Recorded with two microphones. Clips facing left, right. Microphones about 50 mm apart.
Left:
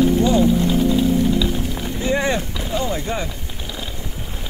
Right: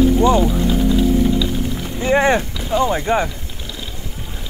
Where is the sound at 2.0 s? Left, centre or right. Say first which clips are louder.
Right 6 dB; right.